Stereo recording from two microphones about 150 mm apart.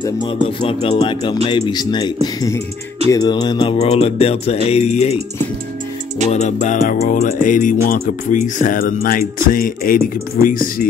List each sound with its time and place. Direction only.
0.0 s speech: 30° left (ahead or behind)
1.7 s music: 30° left (ahead or behind)
3.7 s speech: 45° left (ahead or behind)
6.3 s music: 55° left (ahead or behind)
9.0 s speech: 70° left (ahead or behind)